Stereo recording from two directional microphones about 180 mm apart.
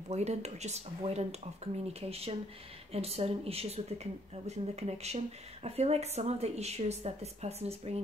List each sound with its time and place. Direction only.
0.1 s speech: 35° right (ahead or behind)